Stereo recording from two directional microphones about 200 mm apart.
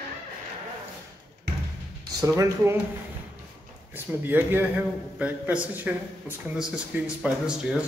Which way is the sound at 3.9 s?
10° right (ahead or behind).